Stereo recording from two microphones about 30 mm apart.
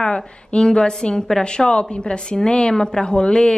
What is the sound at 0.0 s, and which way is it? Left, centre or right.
A woman's voice, left.